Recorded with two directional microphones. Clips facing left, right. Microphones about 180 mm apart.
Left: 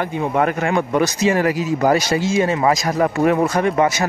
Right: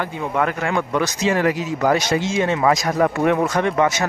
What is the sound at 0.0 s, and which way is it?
Speech, 20° left (ahead or behind).